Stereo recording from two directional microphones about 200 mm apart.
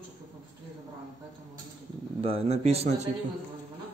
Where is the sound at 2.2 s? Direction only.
30° right (ahead or behind).